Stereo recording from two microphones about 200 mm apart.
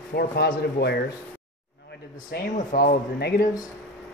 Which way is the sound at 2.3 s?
50° left (ahead or behind).